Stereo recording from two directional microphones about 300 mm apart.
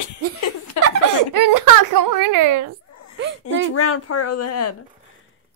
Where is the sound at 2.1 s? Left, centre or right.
Right.